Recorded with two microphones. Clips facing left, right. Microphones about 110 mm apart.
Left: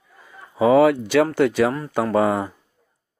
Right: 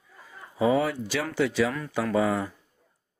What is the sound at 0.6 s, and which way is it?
Speech, 70° left (ahead or behind).